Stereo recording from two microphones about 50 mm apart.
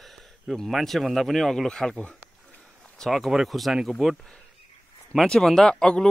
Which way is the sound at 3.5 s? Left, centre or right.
Centre.